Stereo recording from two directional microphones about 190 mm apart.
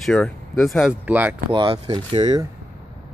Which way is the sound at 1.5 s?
25° right (ahead or behind).